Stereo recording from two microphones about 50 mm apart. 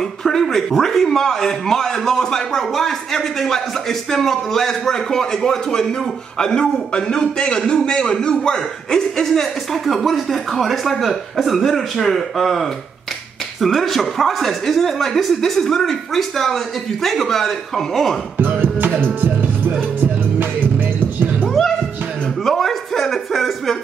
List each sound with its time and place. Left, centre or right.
0.2 s a man's voice: centre
18.4 s music: right
22.4 s a sound: centre